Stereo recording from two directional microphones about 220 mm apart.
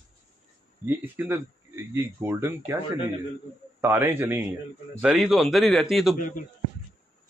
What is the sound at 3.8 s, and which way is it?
A man's voice, 10° right (ahead or behind).